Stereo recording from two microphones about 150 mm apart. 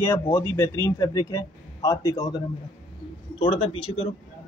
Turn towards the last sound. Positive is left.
turn(degrees=40)  # may be behind; listen again after turning